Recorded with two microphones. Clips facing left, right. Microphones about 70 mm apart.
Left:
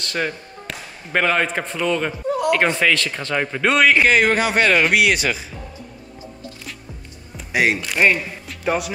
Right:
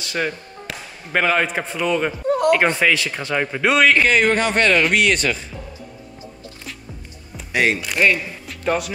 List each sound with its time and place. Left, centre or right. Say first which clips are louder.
0.0 s speech: even; centre
2.2 s a sound: right 4 dB; right
2.5 s speech: right 1 dB; centre
7.3 s speech: even; centre
8.5 s music: right 1 dB; centre